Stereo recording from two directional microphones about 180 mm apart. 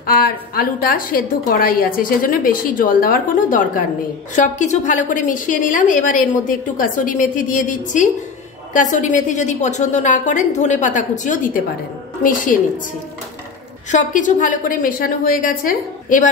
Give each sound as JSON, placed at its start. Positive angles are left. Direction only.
{"t": 0.0, "sound": "a woman's voice", "side_deg": 55}
{"t": 13.9, "sound": "a woman's voice", "side_deg": 45}